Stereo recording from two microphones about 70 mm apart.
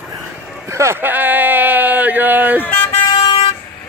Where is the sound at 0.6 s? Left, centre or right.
Right.